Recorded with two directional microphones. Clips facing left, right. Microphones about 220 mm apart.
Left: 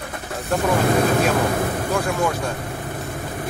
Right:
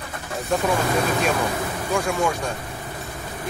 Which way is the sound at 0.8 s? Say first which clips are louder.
Left 4 dB; 55° left (ahead or behind).